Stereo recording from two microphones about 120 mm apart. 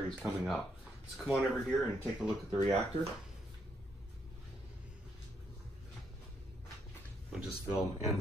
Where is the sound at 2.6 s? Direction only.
60° right (ahead or behind).